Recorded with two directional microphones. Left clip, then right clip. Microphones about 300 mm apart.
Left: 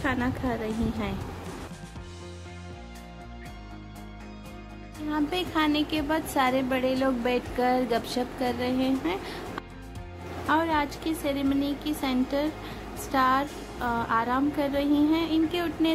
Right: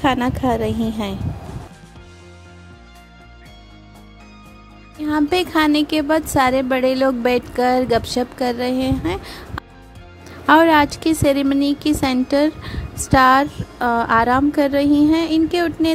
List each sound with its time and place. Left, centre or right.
0.0 s a woman's voice: right
5.0 s a woman's voice: right